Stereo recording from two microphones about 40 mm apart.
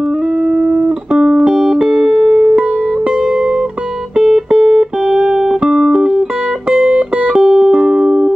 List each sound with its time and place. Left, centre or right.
0.5 s music: right
1.5 s music: centre
4.5 s music: right